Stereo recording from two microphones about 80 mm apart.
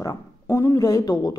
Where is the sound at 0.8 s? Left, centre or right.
Left.